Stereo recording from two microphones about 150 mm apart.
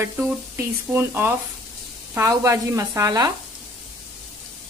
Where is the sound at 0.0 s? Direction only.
20° right (ahead or behind).